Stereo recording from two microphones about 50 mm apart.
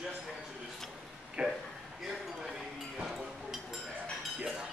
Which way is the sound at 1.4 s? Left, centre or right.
Right.